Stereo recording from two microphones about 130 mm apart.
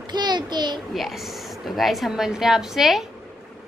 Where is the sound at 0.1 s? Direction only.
35° right (ahead or behind).